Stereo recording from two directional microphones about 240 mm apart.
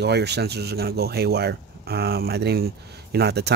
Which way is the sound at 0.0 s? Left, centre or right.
Right.